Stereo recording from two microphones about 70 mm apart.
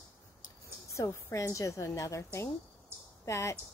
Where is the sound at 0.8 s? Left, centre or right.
Left.